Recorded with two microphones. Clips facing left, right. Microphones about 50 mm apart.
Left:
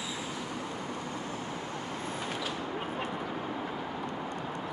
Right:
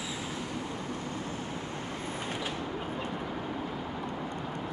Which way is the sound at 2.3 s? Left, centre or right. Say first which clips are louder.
Right 1 dB; right.